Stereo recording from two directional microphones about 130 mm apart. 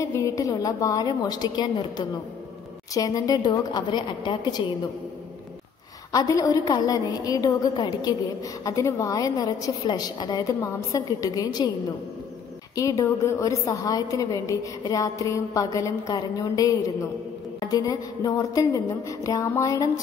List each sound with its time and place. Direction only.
0.0 s a woman's voice: 25° left (ahead or behind)
6.1 s a woman's voice: 25° left (ahead or behind)
12.7 s a woman's voice: 25° left (ahead or behind)